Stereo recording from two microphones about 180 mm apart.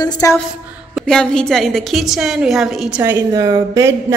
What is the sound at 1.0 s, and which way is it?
A woman's voice, 5° left (ahead or behind).